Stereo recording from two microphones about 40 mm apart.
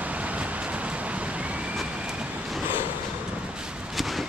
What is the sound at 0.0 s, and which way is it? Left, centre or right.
Vehicle, right.